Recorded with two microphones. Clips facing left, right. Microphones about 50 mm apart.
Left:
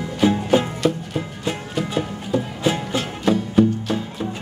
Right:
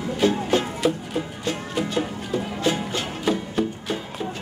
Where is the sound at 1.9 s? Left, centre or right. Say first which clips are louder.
Left 2 dB; centre.